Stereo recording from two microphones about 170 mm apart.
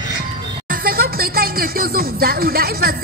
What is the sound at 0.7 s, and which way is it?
Music, 60° right (ahead or behind).